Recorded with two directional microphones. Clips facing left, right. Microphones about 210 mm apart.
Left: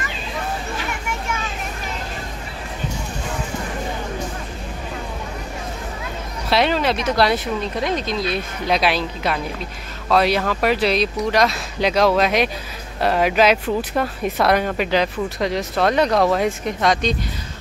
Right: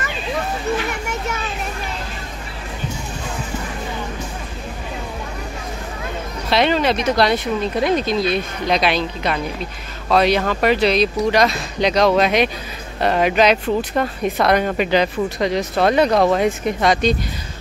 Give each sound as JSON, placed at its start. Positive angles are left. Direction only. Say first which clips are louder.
{"t": 6.5, "sound": "speech", "louder": "right 2 dB", "side_deg": 0}